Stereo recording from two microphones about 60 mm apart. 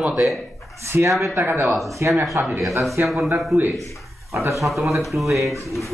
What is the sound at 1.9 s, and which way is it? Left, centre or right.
Speech, right.